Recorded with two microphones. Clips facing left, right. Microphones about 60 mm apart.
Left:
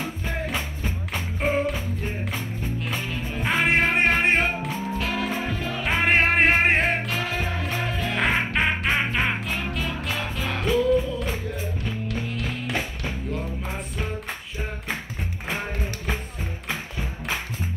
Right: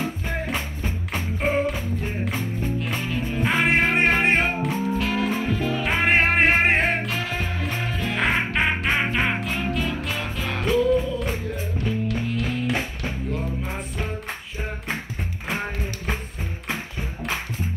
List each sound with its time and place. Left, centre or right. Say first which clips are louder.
0.6 s music: right 1 dB; right
1.4 s music: right 1 dB; centre
3.3 s music: right 1 dB; centre